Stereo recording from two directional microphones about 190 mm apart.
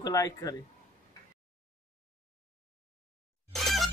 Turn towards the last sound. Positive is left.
turn(degrees=0)  # may be behind; listen again after turning